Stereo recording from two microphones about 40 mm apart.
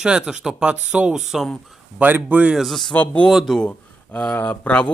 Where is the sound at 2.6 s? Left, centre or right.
Centre.